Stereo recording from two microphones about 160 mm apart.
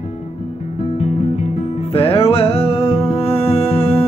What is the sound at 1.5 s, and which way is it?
Music, 40° left (ahead or behind).